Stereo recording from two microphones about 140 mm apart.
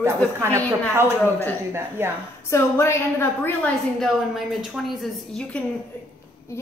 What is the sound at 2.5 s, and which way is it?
A woman's voice, 20° left (ahead or behind).